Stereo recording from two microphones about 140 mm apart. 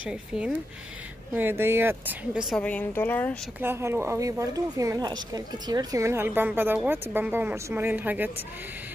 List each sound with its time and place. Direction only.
0.0 s speech: 10° right (ahead or behind)
2.5 s a woman's voice: 10° left (ahead or behind)
3.6 s speech: 15° right (ahead or behind)